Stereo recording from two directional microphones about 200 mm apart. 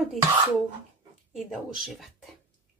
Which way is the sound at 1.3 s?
Centre (ahead or behind).